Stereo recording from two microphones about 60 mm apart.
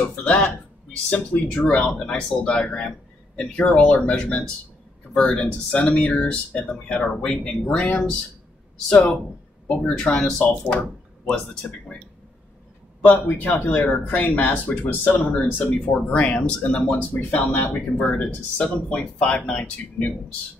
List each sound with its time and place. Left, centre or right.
0.0 s speech: left
1.5 s speech: centre
4.2 s speech: centre
11.2 s speech: centre
13.1 s speech: left
15.9 s speech: centre